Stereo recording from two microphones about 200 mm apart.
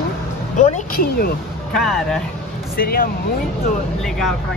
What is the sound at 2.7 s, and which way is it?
Speech, 50° left (ahead or behind).